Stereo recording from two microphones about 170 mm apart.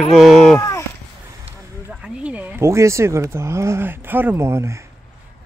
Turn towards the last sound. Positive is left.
turn(degrees=-15)  # may be behind; listen again after turning